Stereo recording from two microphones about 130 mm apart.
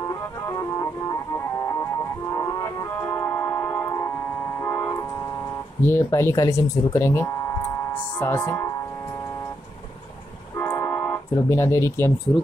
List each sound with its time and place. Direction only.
0.1 s organ: 25° left (ahead or behind)
2.3 s music: 25° left (ahead or behind)
5.9 s speech: 20° left (ahead or behind)
7.9 s music: 15° left (ahead or behind)
10.6 s music: 15° left (ahead or behind)